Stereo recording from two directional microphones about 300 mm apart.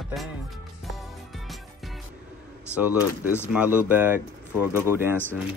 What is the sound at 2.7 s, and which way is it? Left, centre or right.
Speech, centre.